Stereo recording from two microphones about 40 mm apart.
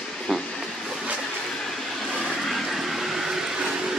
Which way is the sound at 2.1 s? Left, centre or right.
Centre.